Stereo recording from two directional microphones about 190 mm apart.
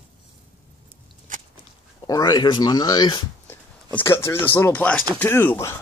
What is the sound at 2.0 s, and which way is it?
Speech, 20° left (ahead or behind).